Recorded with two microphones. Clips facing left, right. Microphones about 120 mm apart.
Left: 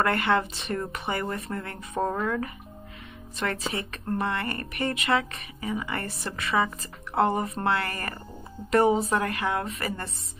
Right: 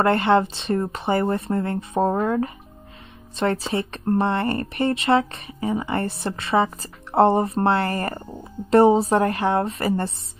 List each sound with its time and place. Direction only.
0.0 s speech: 30° right (ahead or behind)